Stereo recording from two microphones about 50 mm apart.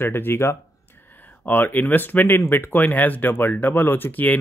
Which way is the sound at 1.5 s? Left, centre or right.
Left.